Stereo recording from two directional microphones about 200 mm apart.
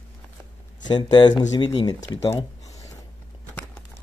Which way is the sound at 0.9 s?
20° left (ahead or behind).